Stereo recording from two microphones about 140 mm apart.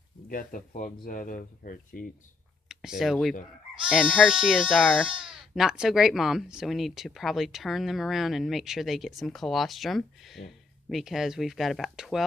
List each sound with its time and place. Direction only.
0.3 s speech: 85° left
3.0 s speech: centre (ahead or behind)